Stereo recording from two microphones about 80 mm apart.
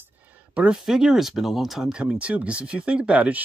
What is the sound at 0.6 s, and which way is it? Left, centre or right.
Speech, centre.